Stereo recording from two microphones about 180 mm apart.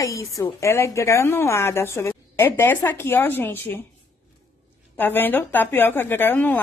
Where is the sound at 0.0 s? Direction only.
20° left (ahead or behind).